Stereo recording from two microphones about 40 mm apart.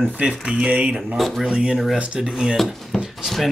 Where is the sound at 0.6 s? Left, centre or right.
Right.